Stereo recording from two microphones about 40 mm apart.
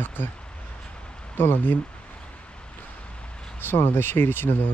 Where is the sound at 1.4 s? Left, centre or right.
Left.